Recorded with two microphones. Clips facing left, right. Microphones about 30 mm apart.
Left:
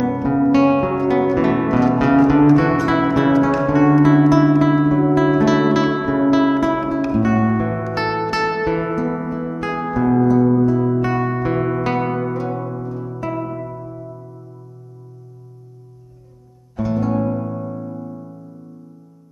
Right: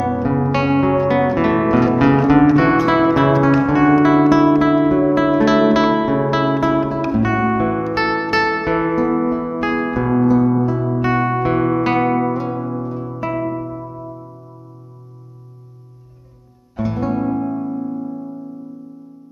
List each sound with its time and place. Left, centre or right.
0.1 s music: centre
5.7 s guitar: centre
6.5 s music: centre
12.5 s music: centre
16.7 s music: centre